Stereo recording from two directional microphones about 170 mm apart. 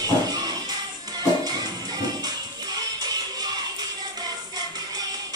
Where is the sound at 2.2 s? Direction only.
25° right (ahead or behind).